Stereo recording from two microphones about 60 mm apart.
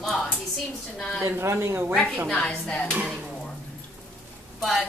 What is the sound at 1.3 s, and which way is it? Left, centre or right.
Speech, right.